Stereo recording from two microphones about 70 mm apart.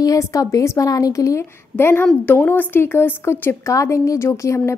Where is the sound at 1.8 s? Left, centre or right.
Left.